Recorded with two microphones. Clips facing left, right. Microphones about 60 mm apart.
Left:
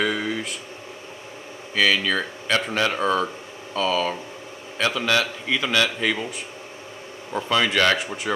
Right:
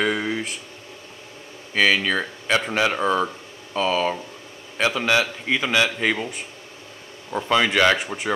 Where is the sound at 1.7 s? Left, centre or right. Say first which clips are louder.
Right 1 dB; centre.